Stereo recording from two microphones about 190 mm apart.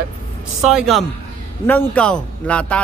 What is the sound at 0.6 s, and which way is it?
Speech, centre (ahead or behind).